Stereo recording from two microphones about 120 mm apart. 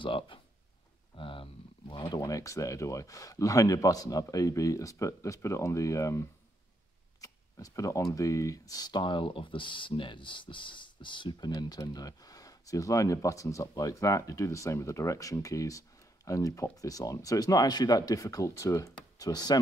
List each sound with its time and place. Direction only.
0.0 s speech: 45° left (ahead or behind)